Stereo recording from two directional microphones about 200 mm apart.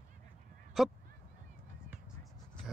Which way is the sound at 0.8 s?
Centre (ahead or behind).